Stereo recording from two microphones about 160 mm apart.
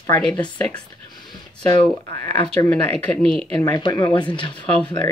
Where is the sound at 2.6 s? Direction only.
20° left (ahead or behind).